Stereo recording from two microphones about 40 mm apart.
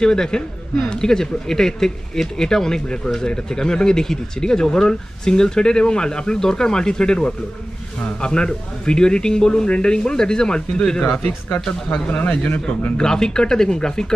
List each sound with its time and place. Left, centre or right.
0.0 s speech: centre
12.1 s speech: left
12.9 s speech: centre